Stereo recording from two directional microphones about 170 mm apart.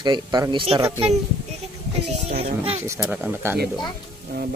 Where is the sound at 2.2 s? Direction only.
35° right (ahead or behind).